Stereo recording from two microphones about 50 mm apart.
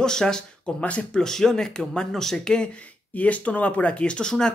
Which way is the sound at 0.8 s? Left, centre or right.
Left.